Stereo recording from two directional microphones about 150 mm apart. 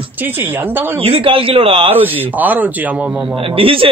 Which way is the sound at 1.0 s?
40° right (ahead or behind).